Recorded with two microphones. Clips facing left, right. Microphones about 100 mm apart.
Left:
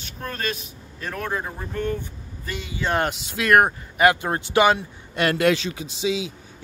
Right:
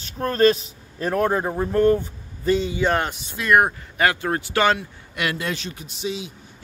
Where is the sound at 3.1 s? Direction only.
80° left.